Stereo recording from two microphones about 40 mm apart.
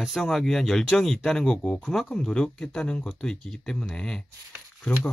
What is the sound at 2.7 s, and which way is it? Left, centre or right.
Speech, left.